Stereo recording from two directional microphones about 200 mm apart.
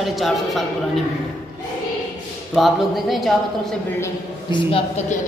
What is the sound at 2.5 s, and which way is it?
A woman's voice, centre (ahead or behind).